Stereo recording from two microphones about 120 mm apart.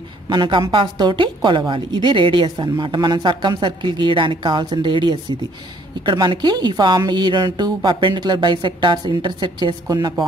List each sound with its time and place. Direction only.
0.3 s a woman's voice: 40° right (ahead or behind)